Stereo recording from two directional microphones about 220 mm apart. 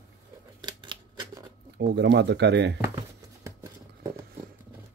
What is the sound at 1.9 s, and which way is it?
Speech, 50° right (ahead or behind).